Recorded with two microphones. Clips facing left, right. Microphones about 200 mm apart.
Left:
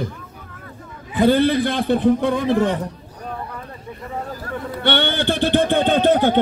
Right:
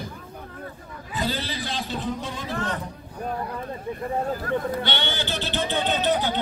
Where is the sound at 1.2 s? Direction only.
55° left (ahead or behind).